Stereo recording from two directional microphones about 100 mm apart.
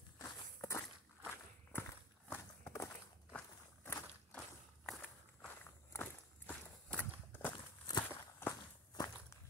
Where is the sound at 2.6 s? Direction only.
30° left (ahead or behind).